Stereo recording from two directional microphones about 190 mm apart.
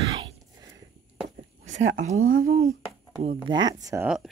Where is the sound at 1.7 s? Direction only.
85° right.